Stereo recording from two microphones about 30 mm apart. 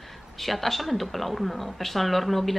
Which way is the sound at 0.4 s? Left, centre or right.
Centre.